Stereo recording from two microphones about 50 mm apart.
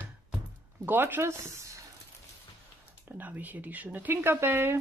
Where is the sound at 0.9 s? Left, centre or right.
Right.